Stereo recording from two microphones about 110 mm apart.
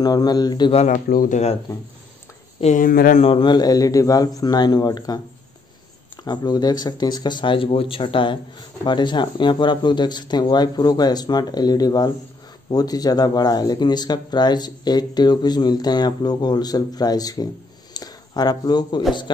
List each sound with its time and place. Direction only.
0.0 s speech: 35° left (ahead or behind)
0.7 s speech: 75° left (ahead or behind)
3.3 s speech: 40° left (ahead or behind)
6.2 s speech: 40° left (ahead or behind)